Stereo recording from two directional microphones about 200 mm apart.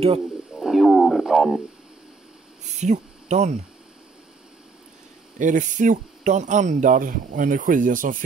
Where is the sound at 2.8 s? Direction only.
35° right (ahead or behind).